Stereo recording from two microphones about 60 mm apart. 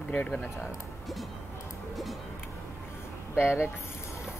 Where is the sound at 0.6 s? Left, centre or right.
Centre.